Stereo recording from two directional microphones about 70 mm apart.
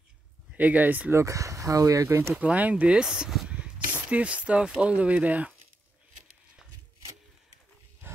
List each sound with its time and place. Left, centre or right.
0.6 s speech: right
1.1 s speech: right
2.3 s speech: centre
3.4 s a sound: centre
4.6 s speech: centre
8.0 s wild animals: right